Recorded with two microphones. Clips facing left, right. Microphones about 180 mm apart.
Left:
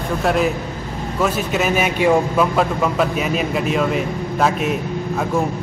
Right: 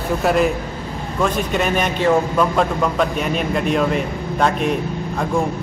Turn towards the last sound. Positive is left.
turn(degrees=5)  # may be behind; listen again after turning